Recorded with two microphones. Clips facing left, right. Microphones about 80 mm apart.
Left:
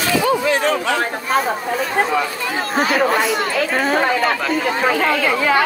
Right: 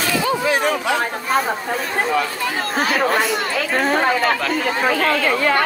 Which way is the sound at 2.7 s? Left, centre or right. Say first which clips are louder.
Left 2 dB; centre.